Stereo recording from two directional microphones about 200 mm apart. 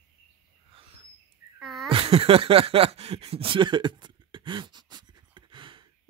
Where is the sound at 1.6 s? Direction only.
Centre (ahead or behind).